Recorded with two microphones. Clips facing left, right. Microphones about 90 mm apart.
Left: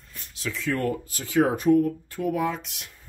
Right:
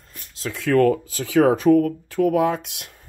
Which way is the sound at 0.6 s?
90° right.